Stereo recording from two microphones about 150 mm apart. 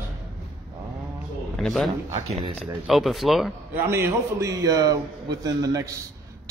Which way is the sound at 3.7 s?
15° right (ahead or behind).